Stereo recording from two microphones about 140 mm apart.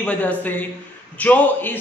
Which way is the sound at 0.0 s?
10° left (ahead or behind).